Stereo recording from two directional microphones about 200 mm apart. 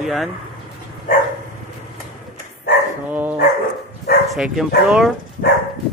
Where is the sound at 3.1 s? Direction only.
10° right (ahead or behind).